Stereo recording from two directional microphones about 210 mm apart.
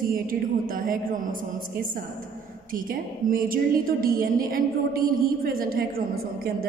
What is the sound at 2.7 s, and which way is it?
A woman's voice, 40° right (ahead or behind).